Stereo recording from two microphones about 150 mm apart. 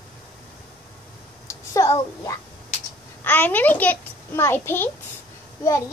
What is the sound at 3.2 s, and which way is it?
A child's voice, 10° left (ahead or behind).